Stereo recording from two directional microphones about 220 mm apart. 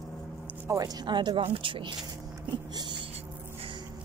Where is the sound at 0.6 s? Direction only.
15° right (ahead or behind).